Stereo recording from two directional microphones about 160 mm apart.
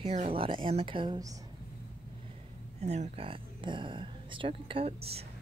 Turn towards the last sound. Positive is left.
turn(degrees=-35)  # may be behind; listen again after turning